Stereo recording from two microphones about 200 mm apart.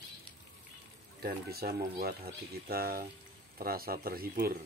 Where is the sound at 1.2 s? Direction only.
50° right (ahead or behind).